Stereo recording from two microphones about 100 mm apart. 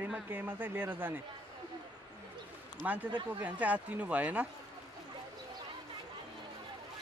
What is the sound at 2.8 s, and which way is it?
Speech, 15° right (ahead or behind).